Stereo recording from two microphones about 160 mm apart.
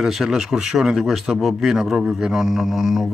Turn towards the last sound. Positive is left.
turn(degrees=0)  # may be behind; listen again after turning